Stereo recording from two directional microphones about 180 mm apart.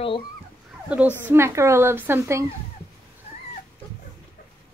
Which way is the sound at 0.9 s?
10° right (ahead or behind).